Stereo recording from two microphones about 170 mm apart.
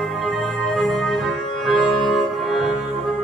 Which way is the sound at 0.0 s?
Centre (ahead or behind).